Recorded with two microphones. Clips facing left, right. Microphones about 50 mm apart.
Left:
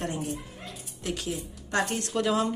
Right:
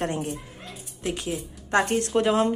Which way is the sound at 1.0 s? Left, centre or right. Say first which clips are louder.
Right 3 dB; right.